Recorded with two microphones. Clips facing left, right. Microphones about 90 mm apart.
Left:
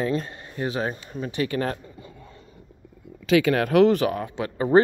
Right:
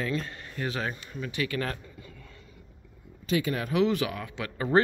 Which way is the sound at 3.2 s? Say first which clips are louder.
Left 9 dB; 85° left.